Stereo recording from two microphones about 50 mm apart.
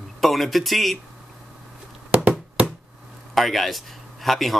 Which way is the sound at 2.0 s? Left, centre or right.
Right.